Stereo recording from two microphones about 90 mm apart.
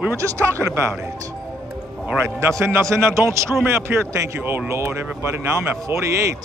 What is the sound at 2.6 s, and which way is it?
Speech, 25° right (ahead or behind).